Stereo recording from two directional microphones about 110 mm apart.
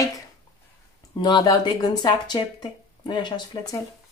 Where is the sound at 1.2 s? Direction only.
40° left (ahead or behind).